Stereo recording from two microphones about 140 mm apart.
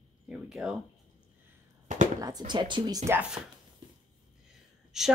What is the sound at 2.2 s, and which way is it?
Speech, 30° right (ahead or behind).